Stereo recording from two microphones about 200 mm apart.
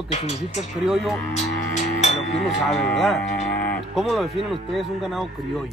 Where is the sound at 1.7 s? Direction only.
35° left (ahead or behind).